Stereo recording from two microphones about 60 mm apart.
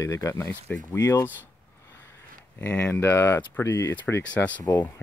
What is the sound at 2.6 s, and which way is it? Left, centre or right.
Speech, left.